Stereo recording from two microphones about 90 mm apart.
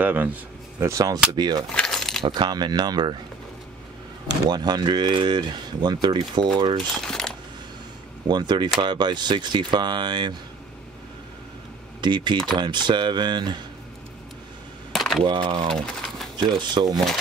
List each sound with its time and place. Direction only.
0.0 s speech: 20° right (ahead or behind)
0.7 s speech: 35° right (ahead or behind)
1.3 s speech: 55° right (ahead or behind)
1.7 s coin: 5° left (ahead or behind)
2.2 s speech: 55° right (ahead or behind)
4.5 s speech: 50° right (ahead or behind)
7.0 s speech: 5° left (ahead or behind)
8.3 s speech: 55° right (ahead or behind)
12.0 s speech: 60° right (ahead or behind)
14.9 s a sound: centre (ahead or behind)
15.2 s speech: 60° right (ahead or behind)
15.8 s a sound: 5° left (ahead or behind)
16.3 s speech: 60° right (ahead or behind)
16.9 s speech: centre (ahead or behind)